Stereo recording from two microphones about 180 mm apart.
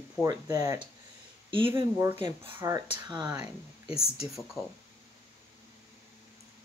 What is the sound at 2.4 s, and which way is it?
Speech, 15° right (ahead or behind).